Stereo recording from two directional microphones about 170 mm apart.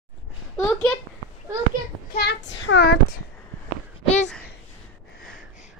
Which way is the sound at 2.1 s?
85° left.